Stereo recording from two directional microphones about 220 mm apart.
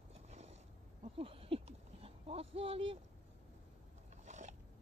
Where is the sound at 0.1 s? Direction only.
30° right (ahead or behind).